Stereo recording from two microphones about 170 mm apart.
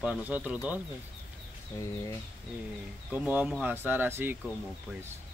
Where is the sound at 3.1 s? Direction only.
10° right (ahead or behind).